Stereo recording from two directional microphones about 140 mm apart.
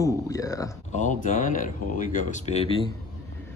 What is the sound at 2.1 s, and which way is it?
Speech, 55° left (ahead or behind).